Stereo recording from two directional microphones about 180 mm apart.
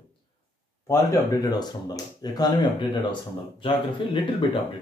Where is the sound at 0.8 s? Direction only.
20° left (ahead or behind).